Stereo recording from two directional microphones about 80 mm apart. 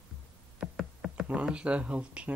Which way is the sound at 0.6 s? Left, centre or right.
Centre.